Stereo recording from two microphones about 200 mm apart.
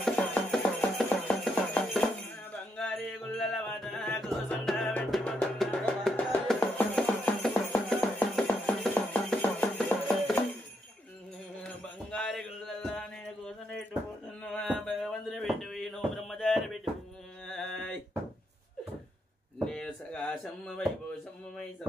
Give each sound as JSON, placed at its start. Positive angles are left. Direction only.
{"t": 0.0, "sound": "music", "side_deg": 5}
{"t": 11.6, "sound": "music", "side_deg": 5}
{"t": 14.4, "sound": "a sound", "side_deg": 5}
{"t": 19.6, "sound": "knock", "side_deg": 5}